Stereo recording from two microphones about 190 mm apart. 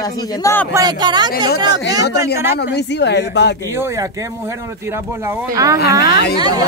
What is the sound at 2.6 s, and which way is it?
Speech, 60° left (ahead or behind).